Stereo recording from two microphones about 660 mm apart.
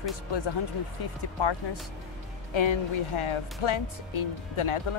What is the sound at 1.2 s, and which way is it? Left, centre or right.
Speech, left.